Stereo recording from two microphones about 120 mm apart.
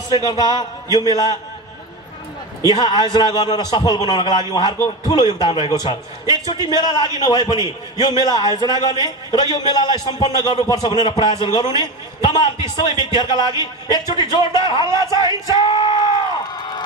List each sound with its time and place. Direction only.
0.1 s a man's voice: 35° left (ahead or behind)
2.6 s a man's voice: 35° left (ahead or behind)